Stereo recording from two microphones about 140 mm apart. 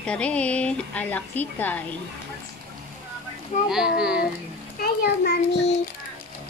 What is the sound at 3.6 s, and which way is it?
Speech, 5° right (ahead or behind).